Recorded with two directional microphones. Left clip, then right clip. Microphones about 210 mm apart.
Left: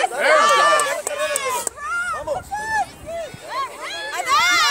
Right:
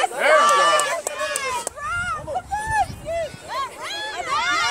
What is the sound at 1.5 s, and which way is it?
Baby cry, 35° right (ahead or behind).